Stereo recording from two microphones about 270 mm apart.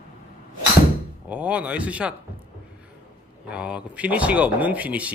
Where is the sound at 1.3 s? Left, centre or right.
Centre.